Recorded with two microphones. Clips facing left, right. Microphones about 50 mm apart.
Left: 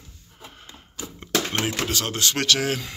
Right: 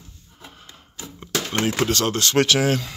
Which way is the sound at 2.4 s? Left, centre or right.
Centre.